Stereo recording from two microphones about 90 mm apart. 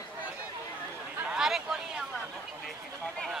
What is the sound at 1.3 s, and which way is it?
Speech, 5° right (ahead or behind).